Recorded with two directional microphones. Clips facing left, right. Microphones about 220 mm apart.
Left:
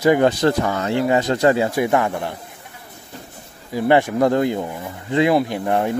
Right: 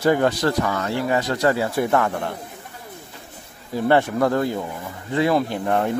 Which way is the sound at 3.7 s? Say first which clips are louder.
Left 2 dB; 10° left (ahead or behind).